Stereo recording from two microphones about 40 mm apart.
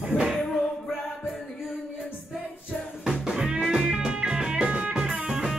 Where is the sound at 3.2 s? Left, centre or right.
Centre.